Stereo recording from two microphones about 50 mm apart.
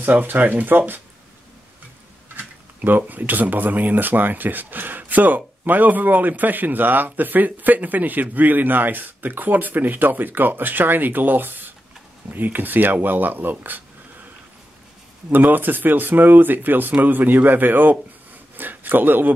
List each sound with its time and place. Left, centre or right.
0.0 s a man's voice: right
2.3 s a sound: right
3.1 s a man's voice: right
15.2 s a man's voice: right